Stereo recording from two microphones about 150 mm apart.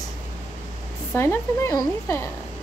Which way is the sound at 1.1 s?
15° left (ahead or behind).